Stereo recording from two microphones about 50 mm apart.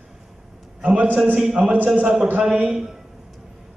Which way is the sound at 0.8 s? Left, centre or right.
Right.